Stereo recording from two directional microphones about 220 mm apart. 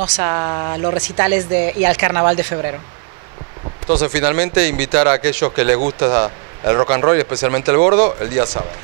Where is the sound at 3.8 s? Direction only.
30° right (ahead or behind).